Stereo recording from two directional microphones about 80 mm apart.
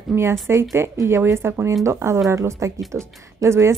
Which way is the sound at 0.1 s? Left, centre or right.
Right.